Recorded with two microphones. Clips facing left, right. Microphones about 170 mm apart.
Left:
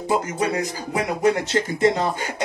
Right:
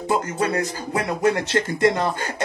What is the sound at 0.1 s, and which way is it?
Speech, 15° left (ahead or behind).